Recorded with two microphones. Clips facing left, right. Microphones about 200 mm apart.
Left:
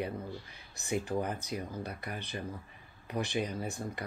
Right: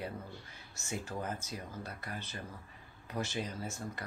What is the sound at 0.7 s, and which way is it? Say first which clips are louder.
Speech: left 7 dB; 15° left (ahead or behind).